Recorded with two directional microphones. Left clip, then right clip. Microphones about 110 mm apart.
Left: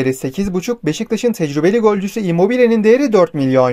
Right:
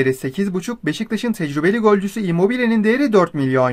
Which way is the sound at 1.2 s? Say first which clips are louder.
Left 4 dB; 20° left (ahead or behind).